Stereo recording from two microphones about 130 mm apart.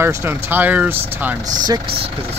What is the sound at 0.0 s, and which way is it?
Speech, 20° right (ahead or behind).